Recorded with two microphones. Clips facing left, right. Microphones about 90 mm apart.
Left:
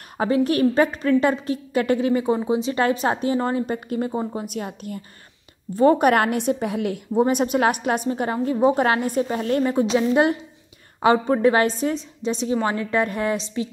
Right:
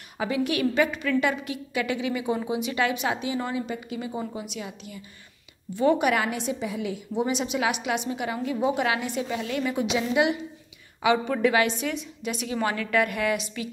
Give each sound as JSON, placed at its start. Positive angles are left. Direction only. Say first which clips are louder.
{"t": 0.2, "sound": "a woman's voice", "louder": "left 6 dB", "side_deg": 40}
{"t": 4.1, "sound": "a woman's voice", "louder": "left 6 dB", "side_deg": 35}
{"t": 7.2, "sound": "a woman's voice", "louder": "left 7 dB", "side_deg": 50}